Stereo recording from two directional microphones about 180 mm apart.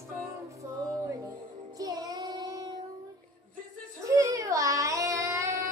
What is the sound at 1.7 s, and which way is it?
Child singing, 20° right (ahead or behind).